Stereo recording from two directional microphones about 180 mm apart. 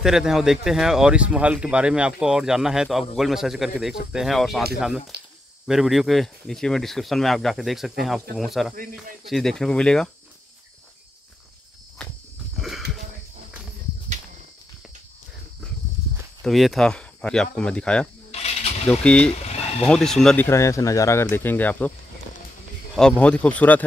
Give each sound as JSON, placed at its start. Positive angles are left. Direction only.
{"t": 0.0, "sound": "speech", "side_deg": -5}
{"t": 12.5, "sound": "a sound", "side_deg": 0}
{"t": 16.4, "sound": "speech", "side_deg": 0}
{"t": 18.3, "sound": "a sound", "side_deg": 35}
{"t": 18.9, "sound": "speech", "side_deg": 5}
{"t": 19.4, "sound": "boiling", "side_deg": 35}
{"t": 19.8, "sound": "speech", "side_deg": 0}
{"t": 20.4, "sound": "speech", "side_deg": 15}
{"t": 22.9, "sound": "speech", "side_deg": 5}